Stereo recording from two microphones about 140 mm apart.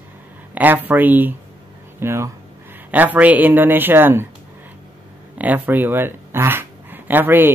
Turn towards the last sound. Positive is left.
turn(degrees=-15)  # may be behind; listen again after turning